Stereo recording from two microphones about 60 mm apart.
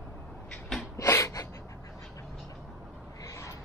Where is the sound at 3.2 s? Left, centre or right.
Left.